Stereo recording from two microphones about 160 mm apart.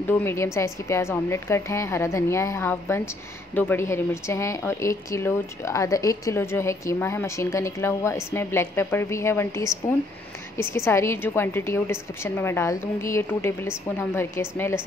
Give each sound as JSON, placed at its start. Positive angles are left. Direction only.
{"t": 0.0, "sound": "a woman's voice", "side_deg": 15}